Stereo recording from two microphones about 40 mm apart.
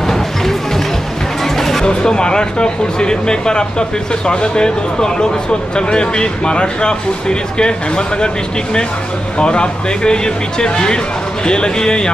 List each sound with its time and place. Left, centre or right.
0.0 s music: centre
1.9 s speech: left
9.4 s speech: left